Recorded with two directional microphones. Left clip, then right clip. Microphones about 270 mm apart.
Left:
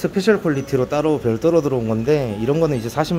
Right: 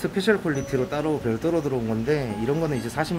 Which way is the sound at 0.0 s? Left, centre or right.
Left.